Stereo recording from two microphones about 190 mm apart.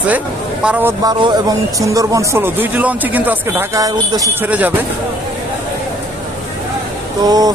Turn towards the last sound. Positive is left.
turn(degrees=-20)  # may be behind; listen again after turning